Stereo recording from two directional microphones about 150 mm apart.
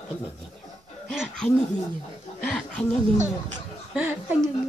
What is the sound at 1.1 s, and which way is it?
Laughter, centre (ahead or behind).